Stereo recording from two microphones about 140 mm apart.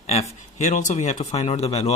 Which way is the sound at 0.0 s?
50° left (ahead or behind).